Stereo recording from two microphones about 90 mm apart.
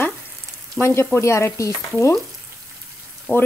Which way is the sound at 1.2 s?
30° left (ahead or behind).